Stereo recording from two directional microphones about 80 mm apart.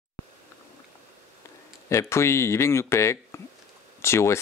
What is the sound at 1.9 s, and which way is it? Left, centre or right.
Speech, left.